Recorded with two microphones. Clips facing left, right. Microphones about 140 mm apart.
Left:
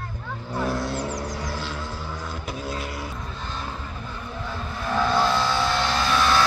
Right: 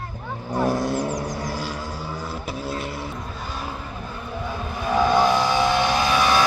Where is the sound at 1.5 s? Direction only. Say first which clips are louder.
Right 2 dB; 10° right (ahead or behind).